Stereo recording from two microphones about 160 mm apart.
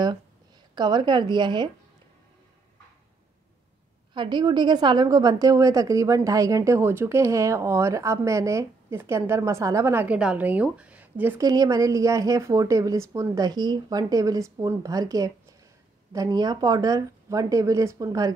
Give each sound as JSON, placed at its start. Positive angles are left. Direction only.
{"t": 0.7, "sound": "a woman's voice", "side_deg": -25}
{"t": 4.1, "sound": "a woman's voice", "side_deg": -30}
{"t": 11.4, "sound": "a woman's voice", "side_deg": -25}